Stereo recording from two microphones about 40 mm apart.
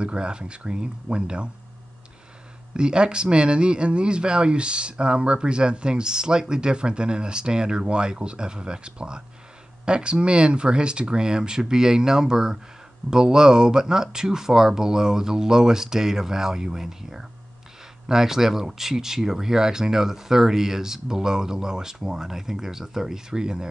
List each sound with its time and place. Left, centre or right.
0.0 s speech: right
2.7 s speech: right